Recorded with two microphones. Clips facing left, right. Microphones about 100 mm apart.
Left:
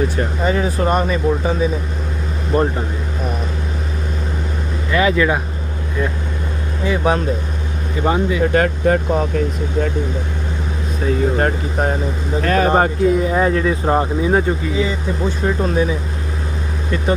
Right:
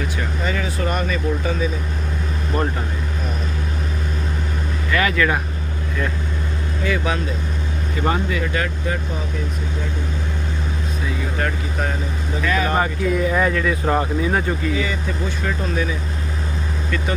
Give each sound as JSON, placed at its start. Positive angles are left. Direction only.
{"t": 0.2, "sound": "speech", "side_deg": 35}
{"t": 4.9, "sound": "speech", "side_deg": 20}
{"t": 8.0, "sound": "speech", "side_deg": 20}
{"t": 8.5, "sound": "speech", "side_deg": 45}
{"t": 11.3, "sound": "speech", "side_deg": 35}
{"t": 13.1, "sound": "speech", "side_deg": 25}